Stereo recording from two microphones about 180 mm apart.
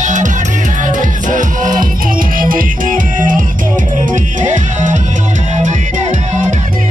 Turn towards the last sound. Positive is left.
turn(degrees=-45)  # may be behind; listen again after turning